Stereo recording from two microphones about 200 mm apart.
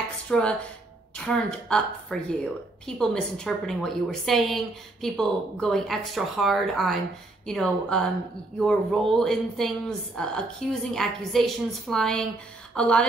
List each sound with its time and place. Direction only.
0.3 s a woman's voice: 5° left (ahead or behind)